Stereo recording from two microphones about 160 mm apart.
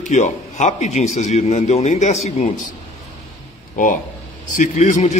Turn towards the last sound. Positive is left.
turn(degrees=50)  # may be behind; listen again after turning